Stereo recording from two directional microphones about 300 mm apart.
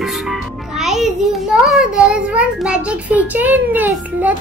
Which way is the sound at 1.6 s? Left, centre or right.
Centre.